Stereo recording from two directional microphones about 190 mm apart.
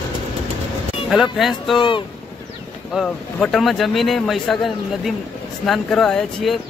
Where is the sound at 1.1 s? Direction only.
Centre (ahead or behind).